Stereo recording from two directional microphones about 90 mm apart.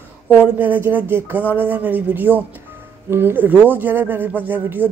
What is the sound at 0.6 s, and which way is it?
Speech, 20° right (ahead or behind).